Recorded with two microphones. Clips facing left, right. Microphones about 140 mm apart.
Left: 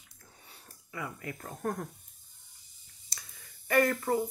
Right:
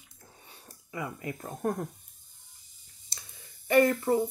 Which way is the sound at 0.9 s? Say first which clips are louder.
Right 4 dB; 20° right (ahead or behind).